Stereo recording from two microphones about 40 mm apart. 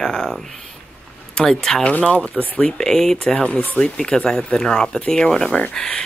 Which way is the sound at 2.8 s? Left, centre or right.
Centre.